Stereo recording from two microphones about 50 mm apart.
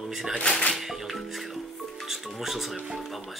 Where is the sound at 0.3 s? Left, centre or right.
Centre.